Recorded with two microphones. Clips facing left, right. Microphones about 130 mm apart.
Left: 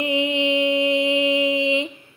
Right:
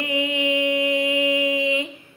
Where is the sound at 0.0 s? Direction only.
25° left (ahead or behind).